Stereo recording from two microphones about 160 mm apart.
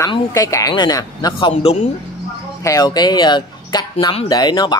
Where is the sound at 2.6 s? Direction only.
20° left (ahead or behind).